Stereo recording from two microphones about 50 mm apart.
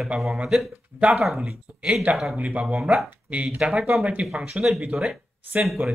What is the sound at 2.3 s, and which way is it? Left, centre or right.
Speech, right.